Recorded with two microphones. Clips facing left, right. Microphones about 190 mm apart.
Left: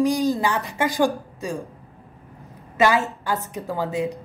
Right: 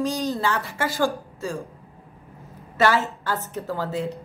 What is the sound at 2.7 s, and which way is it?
Speech, 15° left (ahead or behind).